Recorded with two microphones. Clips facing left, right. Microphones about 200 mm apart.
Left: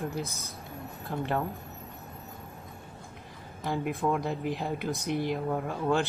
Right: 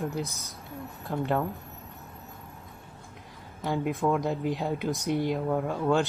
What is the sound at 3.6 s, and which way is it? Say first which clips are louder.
Speech: right 2 dB; centre (ahead or behind).